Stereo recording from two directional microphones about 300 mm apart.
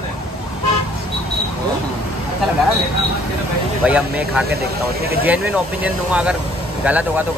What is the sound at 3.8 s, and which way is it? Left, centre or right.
Speech, centre.